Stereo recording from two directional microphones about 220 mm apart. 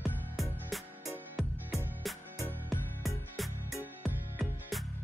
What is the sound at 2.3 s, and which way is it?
Music, 10° left (ahead or behind).